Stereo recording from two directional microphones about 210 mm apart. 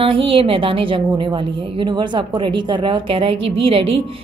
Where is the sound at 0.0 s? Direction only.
25° right (ahead or behind).